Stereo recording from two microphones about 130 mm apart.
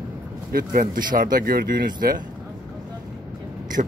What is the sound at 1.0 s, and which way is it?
Speech, 90° right.